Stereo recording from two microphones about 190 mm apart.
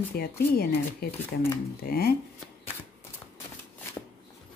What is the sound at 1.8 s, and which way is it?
Speech, 55° left (ahead or behind).